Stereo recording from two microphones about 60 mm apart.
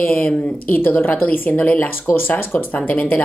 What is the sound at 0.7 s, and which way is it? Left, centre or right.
A woman's voice, left.